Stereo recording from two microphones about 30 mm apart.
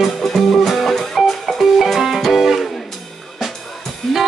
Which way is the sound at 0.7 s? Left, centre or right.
Centre.